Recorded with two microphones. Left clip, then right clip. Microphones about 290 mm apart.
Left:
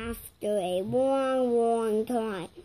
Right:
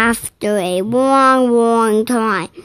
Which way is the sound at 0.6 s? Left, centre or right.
Right.